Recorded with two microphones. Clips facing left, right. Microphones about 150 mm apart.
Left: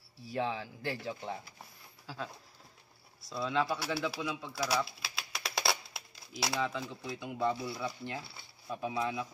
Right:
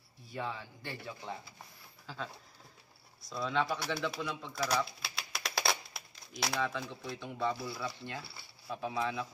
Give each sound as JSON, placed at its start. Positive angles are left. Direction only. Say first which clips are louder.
{"t": 0.2, "sound": "a man's voice", "louder": "left 5 dB", "side_deg": 90}
{"t": 2.0, "sound": "speech", "louder": "left 1 dB", "side_deg": 5}
{"t": 8.6, "sound": "speech", "louder": "left 1 dB", "side_deg": 5}